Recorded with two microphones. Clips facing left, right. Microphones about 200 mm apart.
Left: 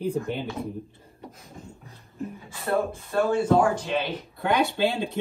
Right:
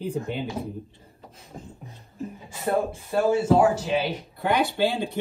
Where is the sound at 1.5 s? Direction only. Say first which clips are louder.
Right 6 dB; 35° right (ahead or behind).